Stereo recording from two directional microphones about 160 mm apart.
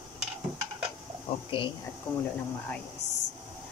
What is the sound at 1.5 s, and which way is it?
Speech, 35° left (ahead or behind).